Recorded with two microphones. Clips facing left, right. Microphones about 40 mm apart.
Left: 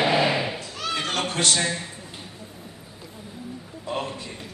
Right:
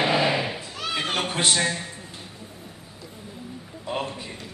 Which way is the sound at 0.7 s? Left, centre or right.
Centre.